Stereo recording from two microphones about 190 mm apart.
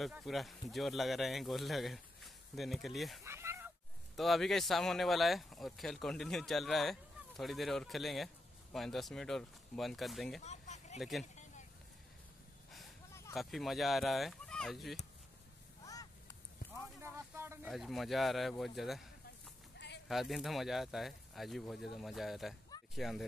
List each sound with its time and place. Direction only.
0.0 s speech: centre (ahead or behind)
3.3 s a sound: 15° right (ahead or behind)
4.2 s speech: centre (ahead or behind)
10.4 s vehicle: 35° left (ahead or behind)
11.0 s speech: centre (ahead or behind)
13.3 s speech: centre (ahead or behind)
15.8 s honk: 20° left (ahead or behind)
17.0 s a sound: 15° right (ahead or behind)
17.6 s speech: centre (ahead or behind)
20.1 s speech: centre (ahead or behind)